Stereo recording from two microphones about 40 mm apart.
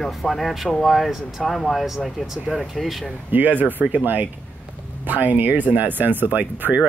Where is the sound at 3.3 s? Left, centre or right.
Right.